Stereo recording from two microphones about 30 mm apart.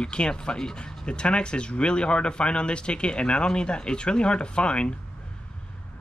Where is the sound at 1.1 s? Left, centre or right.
Left.